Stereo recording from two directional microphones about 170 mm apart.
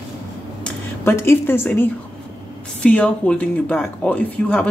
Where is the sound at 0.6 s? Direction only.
15° left (ahead or behind).